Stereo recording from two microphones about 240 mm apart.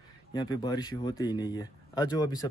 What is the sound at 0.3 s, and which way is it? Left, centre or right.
Speech, centre.